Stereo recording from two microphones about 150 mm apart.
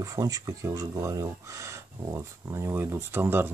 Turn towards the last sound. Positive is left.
turn(degrees=-15)  # may be behind; listen again after turning